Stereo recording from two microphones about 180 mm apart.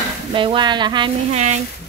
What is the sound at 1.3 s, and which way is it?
Speech, 40° right (ahead or behind).